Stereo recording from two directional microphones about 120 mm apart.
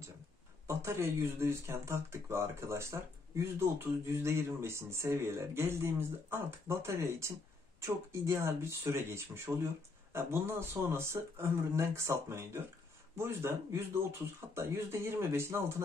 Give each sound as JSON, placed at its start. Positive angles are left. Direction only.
{"t": 0.7, "sound": "speech", "side_deg": -20}